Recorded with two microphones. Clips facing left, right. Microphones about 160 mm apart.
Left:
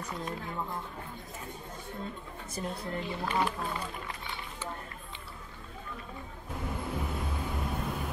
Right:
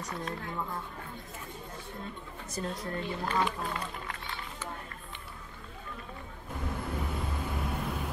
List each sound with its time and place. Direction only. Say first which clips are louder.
0.1 s speech: even; 15° left (ahead or behind)
2.6 s speech: right 1 dB; 5° left (ahead or behind)
2.9 s speech: even; 20° left (ahead or behind)
3.6 s music: even; 5° left (ahead or behind)
6.5 s vehicle: even; 5° left (ahead or behind)